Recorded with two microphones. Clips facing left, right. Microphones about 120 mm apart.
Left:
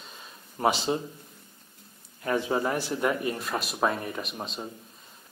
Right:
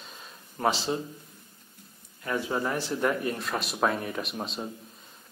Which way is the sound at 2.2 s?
20° left (ahead or behind).